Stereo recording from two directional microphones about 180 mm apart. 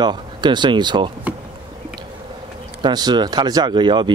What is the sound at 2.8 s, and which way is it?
Speech, 25° right (ahead or behind).